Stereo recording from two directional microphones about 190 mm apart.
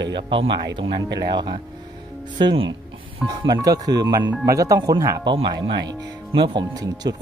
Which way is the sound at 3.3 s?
20° right (ahead or behind).